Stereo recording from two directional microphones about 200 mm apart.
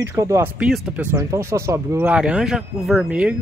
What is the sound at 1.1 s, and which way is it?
Speech, 15° right (ahead or behind).